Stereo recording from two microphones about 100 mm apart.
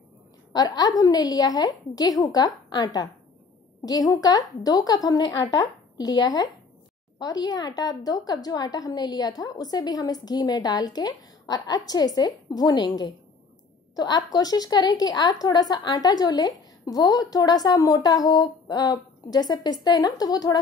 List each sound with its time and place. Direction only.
0.5 s a woman's voice: 40° left (ahead or behind)